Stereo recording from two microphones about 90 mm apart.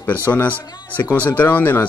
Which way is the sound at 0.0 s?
20° left (ahead or behind).